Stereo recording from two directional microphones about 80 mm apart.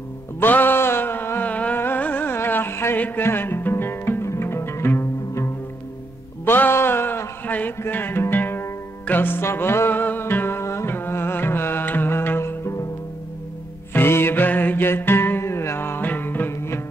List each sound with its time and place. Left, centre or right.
0.4 s a sound: left
6.4 s music: left
13.9 s music: left